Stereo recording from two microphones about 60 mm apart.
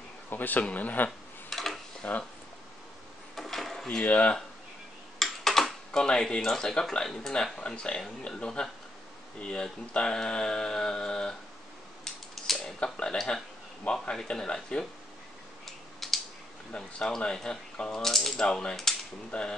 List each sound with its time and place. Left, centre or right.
0.3 s speech: left
1.5 s tick-tock: centre
2.0 s speech: left
3.3 s a sound: centre
4.0 s speech: left
5.2 s tick-tock: centre
5.9 s speech: centre
12.0 s a sound: centre
14.0 s speech: centre
15.6 s tick: centre
16.7 s speech: centre